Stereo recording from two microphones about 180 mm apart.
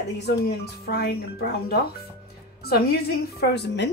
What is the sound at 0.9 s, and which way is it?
Speech, 60° left (ahead or behind).